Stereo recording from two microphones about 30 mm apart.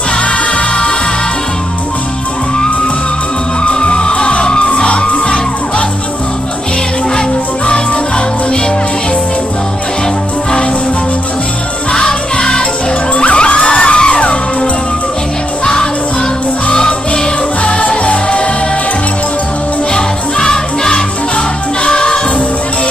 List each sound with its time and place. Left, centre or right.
3.6 s music: left
7.2 s music: left
11.9 s music: left
13.1 s music: left
15.6 s music: left
17.6 s music: left
19.9 s music: left